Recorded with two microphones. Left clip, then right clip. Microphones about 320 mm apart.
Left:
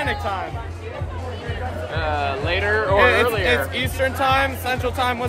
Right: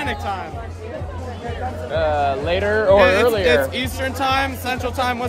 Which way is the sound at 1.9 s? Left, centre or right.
Right.